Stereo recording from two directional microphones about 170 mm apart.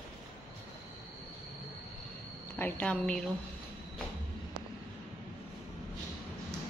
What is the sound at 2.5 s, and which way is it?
Speech, 10° left (ahead or behind).